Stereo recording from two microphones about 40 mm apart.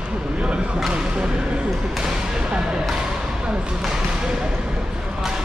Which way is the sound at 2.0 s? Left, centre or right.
Centre.